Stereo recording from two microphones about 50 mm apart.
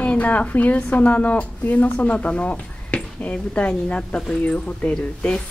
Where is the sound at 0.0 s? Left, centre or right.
Left.